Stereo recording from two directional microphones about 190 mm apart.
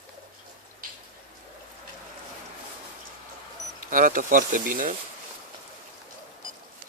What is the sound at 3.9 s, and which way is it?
Speech, 45° right (ahead or behind).